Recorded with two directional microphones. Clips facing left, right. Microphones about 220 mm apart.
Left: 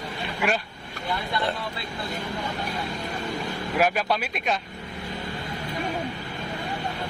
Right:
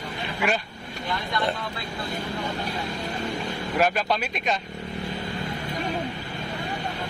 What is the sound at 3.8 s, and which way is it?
Speech, 10° left (ahead or behind).